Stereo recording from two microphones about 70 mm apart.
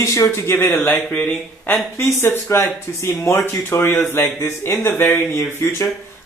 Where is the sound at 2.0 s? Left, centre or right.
Left.